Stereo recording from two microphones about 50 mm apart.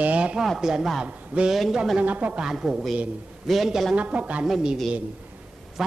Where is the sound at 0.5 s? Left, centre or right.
Centre.